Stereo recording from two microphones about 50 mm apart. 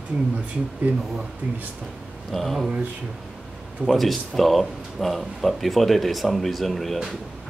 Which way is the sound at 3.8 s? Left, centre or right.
Centre.